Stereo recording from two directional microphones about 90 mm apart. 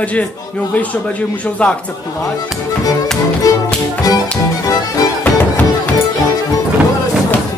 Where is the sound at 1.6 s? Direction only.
15° left (ahead or behind).